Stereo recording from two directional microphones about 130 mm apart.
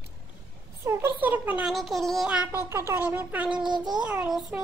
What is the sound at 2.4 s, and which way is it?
A child's voice, 20° right (ahead or behind).